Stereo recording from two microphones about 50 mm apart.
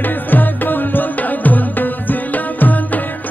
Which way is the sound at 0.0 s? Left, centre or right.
Left.